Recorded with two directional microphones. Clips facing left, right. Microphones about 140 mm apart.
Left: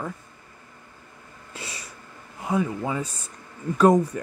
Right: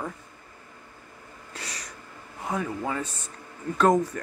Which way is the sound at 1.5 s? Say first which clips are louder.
Left 1 dB; 5° left (ahead or behind).